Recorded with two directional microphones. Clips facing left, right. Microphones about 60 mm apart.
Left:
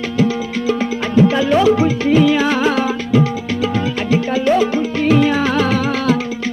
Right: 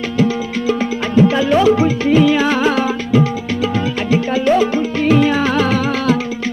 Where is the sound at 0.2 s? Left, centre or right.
Right.